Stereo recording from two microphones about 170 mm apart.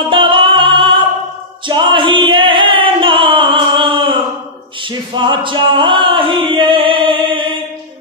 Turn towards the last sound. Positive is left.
turn(degrees=-30)  # may be behind; listen again after turning